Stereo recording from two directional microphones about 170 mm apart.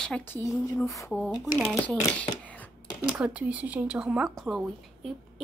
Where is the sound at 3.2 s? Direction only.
5° right (ahead or behind).